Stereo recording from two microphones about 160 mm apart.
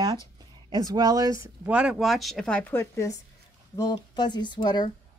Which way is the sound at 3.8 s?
25° left (ahead or behind).